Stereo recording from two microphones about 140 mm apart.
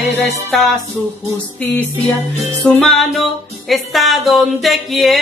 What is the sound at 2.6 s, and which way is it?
Music, 5° left (ahead or behind).